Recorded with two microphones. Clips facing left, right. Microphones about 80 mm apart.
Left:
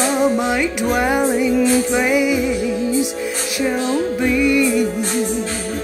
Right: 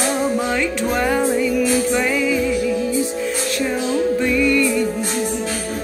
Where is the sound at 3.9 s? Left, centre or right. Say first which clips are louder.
Even; centre.